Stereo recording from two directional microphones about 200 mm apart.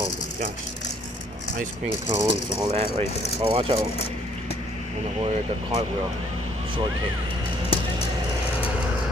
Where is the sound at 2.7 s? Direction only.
30° right (ahead or behind).